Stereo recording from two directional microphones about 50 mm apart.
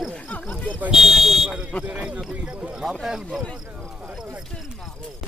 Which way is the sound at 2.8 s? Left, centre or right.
Centre.